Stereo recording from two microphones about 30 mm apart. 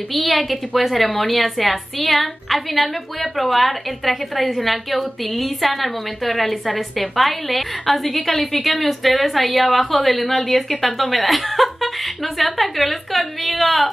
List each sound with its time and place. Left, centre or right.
0.1 s a woman's voice: centre